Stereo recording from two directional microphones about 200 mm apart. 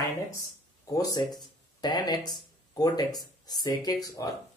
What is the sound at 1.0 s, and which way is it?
A man's voice, 20° left (ahead or behind).